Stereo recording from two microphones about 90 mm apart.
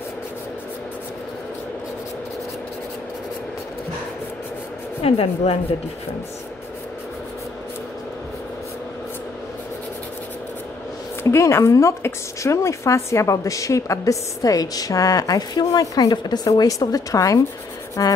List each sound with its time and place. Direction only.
5.0 s speech: 90° left
11.2 s a woman's voice: 30° left (ahead or behind)
18.0 s a sound: 45° left (ahead or behind)